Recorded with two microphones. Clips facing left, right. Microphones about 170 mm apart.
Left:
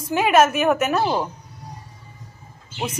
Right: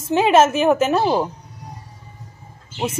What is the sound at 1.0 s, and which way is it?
Speech, 15° right (ahead or behind).